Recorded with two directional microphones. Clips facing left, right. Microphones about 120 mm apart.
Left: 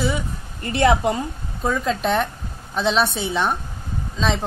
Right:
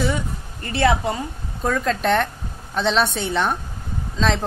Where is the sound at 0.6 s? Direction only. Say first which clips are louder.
Left 2 dB; 20° left (ahead or behind).